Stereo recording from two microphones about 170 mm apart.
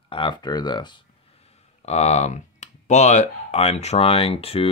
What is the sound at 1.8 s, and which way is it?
Speech, 40° left (ahead or behind).